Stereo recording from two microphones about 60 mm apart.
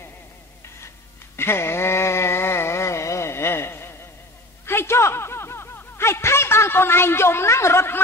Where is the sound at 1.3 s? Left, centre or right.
Left.